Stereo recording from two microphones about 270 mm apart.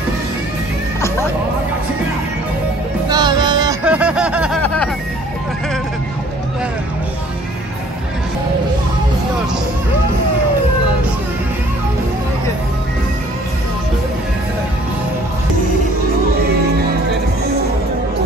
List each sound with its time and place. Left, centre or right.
3.1 s music: centre
3.8 s snicker: centre